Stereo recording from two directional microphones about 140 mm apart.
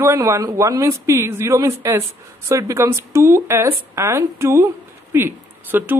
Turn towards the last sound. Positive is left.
turn(degrees=-15)  # may be behind; listen again after turning